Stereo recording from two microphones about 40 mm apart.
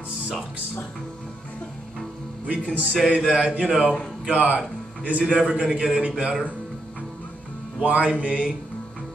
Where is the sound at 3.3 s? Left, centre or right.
Right.